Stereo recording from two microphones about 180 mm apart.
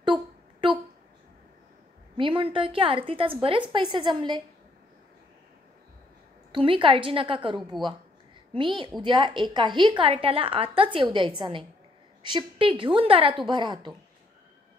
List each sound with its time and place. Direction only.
0.0 s a sound: 25° right (ahead or behind)
2.1 s a woman's voice: 30° right (ahead or behind)
6.5 s a woman's voice: 30° right (ahead or behind)